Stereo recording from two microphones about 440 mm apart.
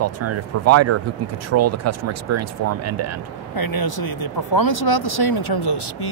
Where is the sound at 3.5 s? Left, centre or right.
Left.